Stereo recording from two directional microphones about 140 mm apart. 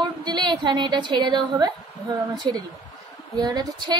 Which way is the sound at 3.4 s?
30° right (ahead or behind).